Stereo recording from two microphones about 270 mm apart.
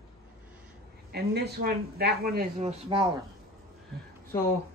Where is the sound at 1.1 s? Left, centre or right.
Right.